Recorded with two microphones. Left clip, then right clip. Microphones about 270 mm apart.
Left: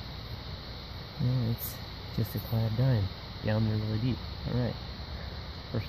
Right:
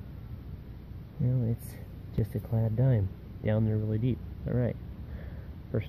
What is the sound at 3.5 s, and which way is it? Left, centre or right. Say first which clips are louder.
Speech: right 2 dB; centre.